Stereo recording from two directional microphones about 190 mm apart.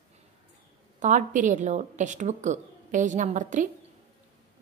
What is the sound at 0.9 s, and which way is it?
A woman's voice, 40° right (ahead or behind).